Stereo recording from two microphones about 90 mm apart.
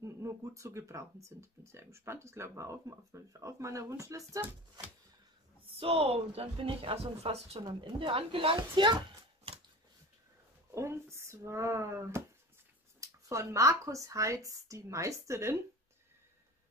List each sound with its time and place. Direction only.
0.0 s speech: 35° right (ahead or behind)
5.8 s speech: 90° right
8.5 s speech: 60° right (ahead or behind)
10.7 s speech: 30° right (ahead or behind)